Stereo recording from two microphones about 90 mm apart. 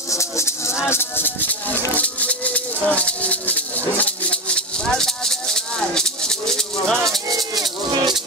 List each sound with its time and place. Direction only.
0.1 s music: 30° left (ahead or behind); by 7.2 s 5° left (ahead or behind)
7.2 s music: 45° right (ahead or behind)
7.9 s music: 60° right (ahead or behind)